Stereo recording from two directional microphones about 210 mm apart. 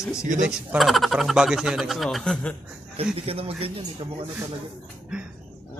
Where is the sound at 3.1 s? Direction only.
25° right (ahead or behind).